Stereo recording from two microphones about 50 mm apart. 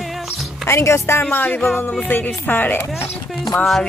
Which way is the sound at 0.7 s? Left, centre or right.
Left.